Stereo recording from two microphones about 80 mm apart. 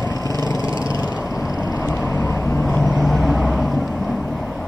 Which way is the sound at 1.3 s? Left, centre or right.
Left.